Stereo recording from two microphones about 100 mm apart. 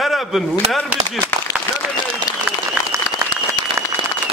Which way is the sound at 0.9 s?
15° right (ahead or behind).